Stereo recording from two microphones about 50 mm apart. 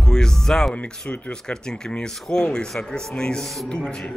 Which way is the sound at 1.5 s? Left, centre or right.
Centre.